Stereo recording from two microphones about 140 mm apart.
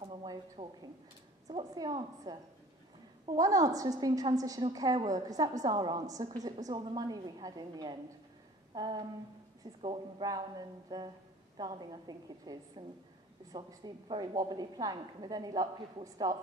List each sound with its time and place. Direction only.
0.0 s a sound: 35° right (ahead or behind)
1.5 s a woman's voice: 30° right (ahead or behind)
10.2 s a woman's voice: 30° right (ahead or behind)